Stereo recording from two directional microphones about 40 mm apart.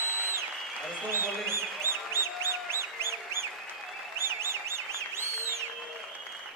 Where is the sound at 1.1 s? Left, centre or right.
Right.